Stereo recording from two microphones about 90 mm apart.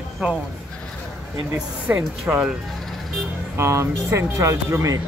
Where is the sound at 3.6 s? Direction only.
30° right (ahead or behind).